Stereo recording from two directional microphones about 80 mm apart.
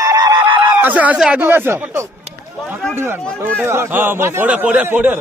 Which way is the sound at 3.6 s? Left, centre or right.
Right.